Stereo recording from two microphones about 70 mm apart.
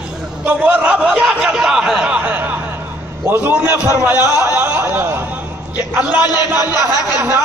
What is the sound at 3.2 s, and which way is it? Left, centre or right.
Speech, right.